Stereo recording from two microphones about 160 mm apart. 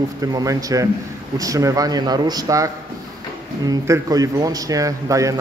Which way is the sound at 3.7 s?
20° right (ahead or behind).